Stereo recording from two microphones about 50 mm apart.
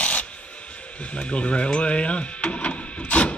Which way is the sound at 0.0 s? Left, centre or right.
Left.